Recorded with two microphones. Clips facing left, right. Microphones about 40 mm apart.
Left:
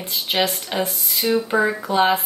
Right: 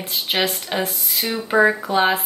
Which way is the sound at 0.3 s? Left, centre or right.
Centre.